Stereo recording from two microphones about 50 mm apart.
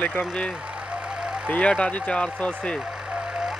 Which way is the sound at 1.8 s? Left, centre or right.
Left.